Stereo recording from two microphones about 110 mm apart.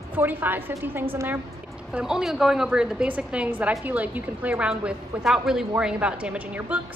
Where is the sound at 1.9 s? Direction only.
5° right (ahead or behind).